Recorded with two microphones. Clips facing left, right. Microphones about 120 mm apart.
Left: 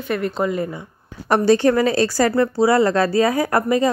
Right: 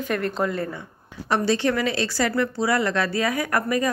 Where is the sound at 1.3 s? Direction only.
45° left (ahead or behind); by 3.9 s 25° left (ahead or behind).